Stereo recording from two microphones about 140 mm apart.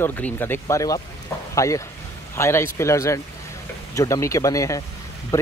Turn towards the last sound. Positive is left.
turn(degrees=20)  # may be behind; listen again after turning